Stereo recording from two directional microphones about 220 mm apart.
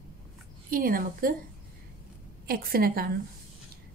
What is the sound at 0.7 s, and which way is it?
Speech, 40° right (ahead or behind).